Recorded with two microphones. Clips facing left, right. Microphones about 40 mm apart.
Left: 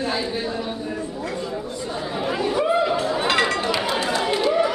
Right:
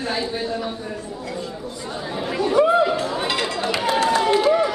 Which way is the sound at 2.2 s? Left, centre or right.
Centre.